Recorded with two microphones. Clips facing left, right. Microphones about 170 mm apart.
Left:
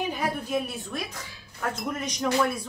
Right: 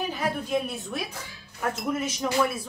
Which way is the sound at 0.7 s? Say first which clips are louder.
Right 1 dB; centre (ahead or behind).